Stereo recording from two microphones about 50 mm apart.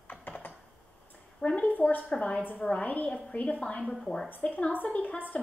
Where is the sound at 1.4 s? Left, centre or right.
Left.